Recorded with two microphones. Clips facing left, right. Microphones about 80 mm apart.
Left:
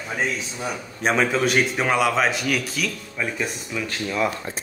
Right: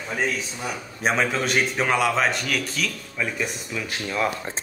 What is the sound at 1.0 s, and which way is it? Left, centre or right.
A man's voice, centre.